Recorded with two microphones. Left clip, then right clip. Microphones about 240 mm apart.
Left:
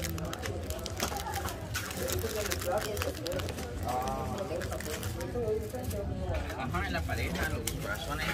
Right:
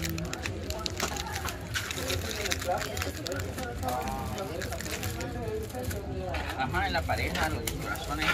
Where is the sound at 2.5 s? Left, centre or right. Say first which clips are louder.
Right 3 dB; left.